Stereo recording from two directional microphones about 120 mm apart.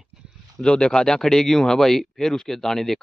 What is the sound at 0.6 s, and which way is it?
Speech, 10° left (ahead or behind).